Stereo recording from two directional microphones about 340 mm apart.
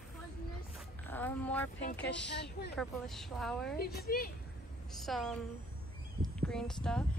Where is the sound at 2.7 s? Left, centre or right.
Centre.